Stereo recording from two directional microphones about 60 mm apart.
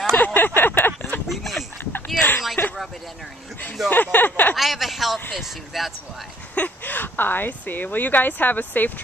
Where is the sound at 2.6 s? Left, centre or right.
Left.